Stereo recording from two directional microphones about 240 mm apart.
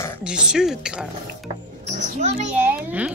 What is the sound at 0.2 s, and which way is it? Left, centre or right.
Speech, centre.